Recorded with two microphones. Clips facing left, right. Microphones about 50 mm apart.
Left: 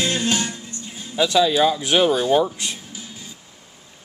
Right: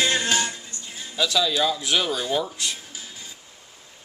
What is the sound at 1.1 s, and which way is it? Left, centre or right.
Speech, left.